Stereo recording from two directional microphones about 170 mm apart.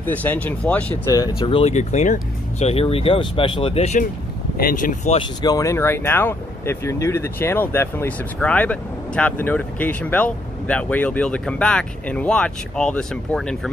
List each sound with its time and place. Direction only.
0.0 s speech: 10° left (ahead or behind)
1.1 s speech: 25° left (ahead or behind); by 4.1 s 40° left (ahead or behind)
4.6 s speech: 55° left (ahead or behind)
5.2 s speech: 25° left (ahead or behind); by 13.6 s 5° left (ahead or behind)